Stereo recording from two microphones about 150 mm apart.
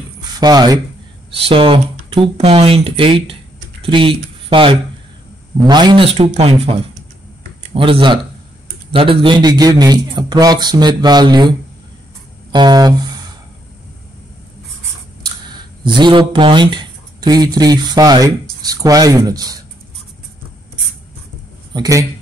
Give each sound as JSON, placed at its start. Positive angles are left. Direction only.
{"t": 0.4, "sound": "a man's voice", "side_deg": -25}
{"t": 1.3, "sound": "a man's voice", "side_deg": -35}
{"t": 12.5, "sound": "a man's voice", "side_deg": -30}
{"t": 15.2, "sound": "speech", "side_deg": -30}
{"t": 21.7, "sound": "a man's voice", "side_deg": -20}